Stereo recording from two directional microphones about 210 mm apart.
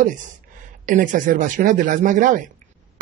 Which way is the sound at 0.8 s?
40° right (ahead or behind).